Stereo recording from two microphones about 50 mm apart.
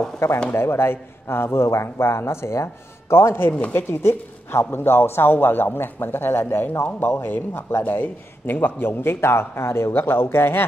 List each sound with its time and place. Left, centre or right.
0.5 s a man's voice: left